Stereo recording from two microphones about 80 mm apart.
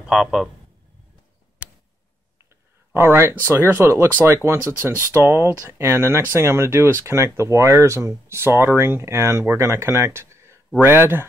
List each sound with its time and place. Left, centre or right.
0.1 s a man's voice: centre
2.9 s speech: right